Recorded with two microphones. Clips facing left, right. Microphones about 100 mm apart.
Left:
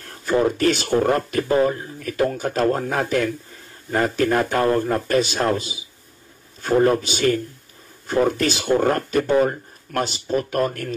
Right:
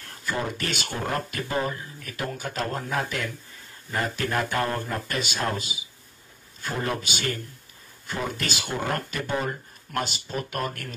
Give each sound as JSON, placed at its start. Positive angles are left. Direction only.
{"t": 0.2, "sound": "speech", "side_deg": 40}